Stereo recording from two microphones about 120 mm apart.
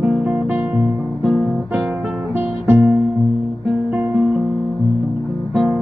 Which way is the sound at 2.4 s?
20° right (ahead or behind).